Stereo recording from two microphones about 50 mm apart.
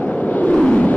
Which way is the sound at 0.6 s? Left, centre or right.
Centre.